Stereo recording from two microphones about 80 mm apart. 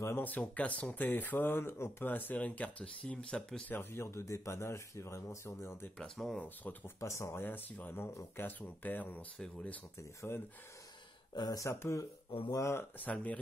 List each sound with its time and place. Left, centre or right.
0.2 s speech: left
3.6 s speech: left
5.9 s speech: centre
6.4 s speech: left
7.0 s speech: left
7.4 s speech: left
9.9 s speech: left
11.3 s speech: left
11.6 s speech: left
12.7 s speech: left